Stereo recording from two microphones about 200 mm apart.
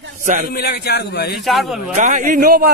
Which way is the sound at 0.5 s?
50° left (ahead or behind).